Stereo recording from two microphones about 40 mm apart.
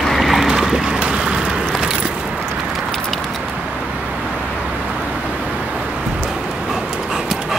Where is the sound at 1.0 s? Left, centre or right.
Right.